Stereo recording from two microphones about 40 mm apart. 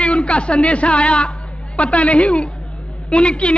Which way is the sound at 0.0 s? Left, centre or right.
Left.